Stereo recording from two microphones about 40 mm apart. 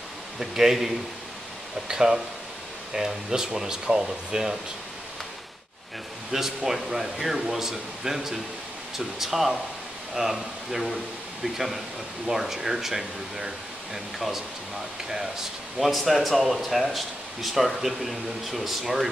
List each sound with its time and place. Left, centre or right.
0.4 s speech: centre
6.3 s speech: centre
15.0 s speech: centre
15.8 s speech: centre